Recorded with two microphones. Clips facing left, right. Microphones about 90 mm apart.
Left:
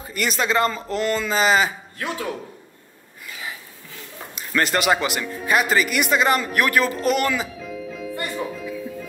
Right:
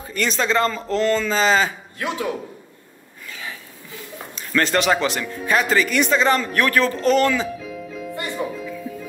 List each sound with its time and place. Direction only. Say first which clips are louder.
0.0 s speech: right 1 dB; 10° left (ahead or behind)
2.0 s speech: right 3 dB; 20° right (ahead or behind)
3.3 s a sound: even; 10° left (ahead or behind)
4.4 s speech: right 2 dB; 10° left (ahead or behind)